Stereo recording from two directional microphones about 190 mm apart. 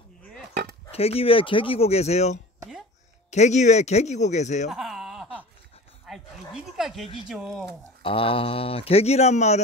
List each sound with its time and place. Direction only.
0.9 s speech: 30° left (ahead or behind)
4.6 s a sound: centre (ahead or behind)
7.2 s speech: centre (ahead or behind)
8.0 s speech: 30° left (ahead or behind)